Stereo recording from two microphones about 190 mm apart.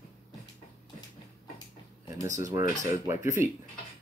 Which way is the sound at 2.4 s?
15° right (ahead or behind).